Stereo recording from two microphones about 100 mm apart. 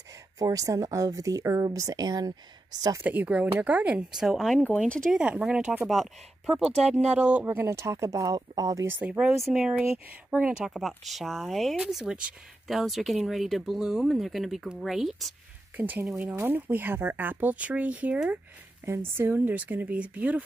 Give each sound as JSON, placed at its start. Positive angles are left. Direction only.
{"t": 0.4, "sound": "speech", "side_deg": -35}
{"t": 3.0, "sound": "speech", "side_deg": -15}
{"t": 4.2, "sound": "speech", "side_deg": 0}
{"t": 4.6, "sound": "speech", "side_deg": 10}
{"t": 5.1, "sound": "speech", "side_deg": -5}
{"t": 5.9, "sound": "speech", "side_deg": 0}
{"t": 7.2, "sound": "speech", "side_deg": -10}
{"t": 7.4, "sound": "speech", "side_deg": -25}
{"t": 9.6, "sound": "speech", "side_deg": -15}
{"t": 15.7, "sound": "speech", "side_deg": -15}